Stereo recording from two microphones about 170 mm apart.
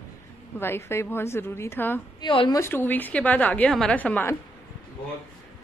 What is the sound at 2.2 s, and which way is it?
Speech, 30° left (ahead or behind).